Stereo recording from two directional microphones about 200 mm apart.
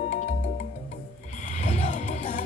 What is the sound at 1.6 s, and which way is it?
Music, 35° left (ahead or behind).